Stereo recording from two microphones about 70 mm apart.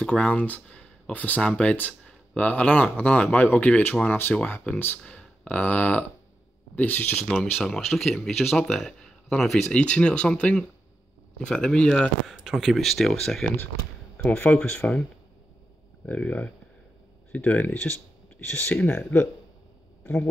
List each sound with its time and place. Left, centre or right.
0.0 s speech: centre
5.0 s speech: centre
7.6 s speech: centre
12.3 s speech: centre
16.1 s speech: left